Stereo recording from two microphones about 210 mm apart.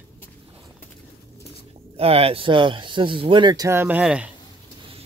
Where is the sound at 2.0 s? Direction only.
25° right (ahead or behind); by 4.3 s 5° right (ahead or behind).